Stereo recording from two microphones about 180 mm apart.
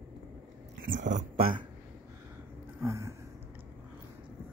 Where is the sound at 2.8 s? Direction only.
15° right (ahead or behind).